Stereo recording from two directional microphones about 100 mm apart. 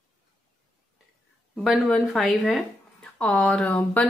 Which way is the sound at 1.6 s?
Centre (ahead or behind).